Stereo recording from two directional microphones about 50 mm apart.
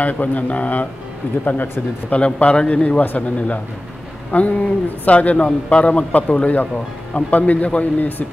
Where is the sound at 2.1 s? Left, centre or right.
Left.